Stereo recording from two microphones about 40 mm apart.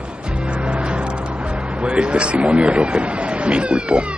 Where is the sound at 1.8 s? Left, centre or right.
Right.